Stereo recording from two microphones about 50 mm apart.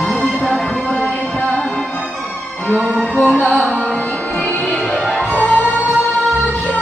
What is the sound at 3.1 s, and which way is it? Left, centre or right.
Music, left.